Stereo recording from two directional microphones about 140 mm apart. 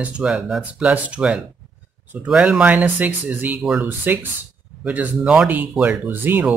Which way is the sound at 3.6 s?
5° right (ahead or behind).